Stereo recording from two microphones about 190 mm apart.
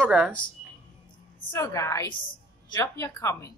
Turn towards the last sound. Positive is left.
turn(degrees=15)  # may be behind; listen again after turning